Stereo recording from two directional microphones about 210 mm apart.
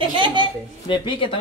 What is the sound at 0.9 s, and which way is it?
Speech, 25° left (ahead or behind).